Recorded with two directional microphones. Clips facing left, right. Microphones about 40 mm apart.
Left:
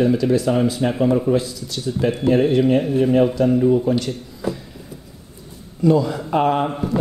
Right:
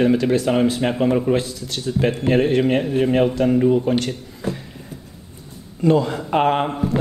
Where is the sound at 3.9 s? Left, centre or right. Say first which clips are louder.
Even; right.